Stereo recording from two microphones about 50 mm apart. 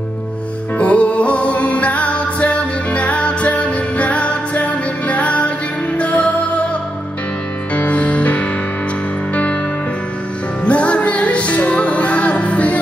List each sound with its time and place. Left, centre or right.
0.7 s music: left
7.7 s music: left
10.6 s music: left